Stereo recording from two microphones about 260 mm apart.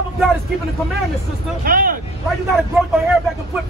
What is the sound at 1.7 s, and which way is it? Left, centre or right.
Speech, right.